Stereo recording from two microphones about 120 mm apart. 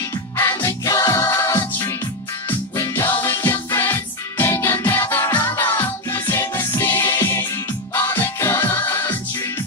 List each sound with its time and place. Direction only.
0.4 s music: 20° left (ahead or behind)
2.7 s music: 25° left (ahead or behind)